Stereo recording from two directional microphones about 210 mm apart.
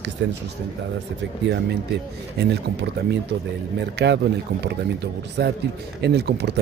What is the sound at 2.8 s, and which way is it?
Speech, 50° right (ahead or behind).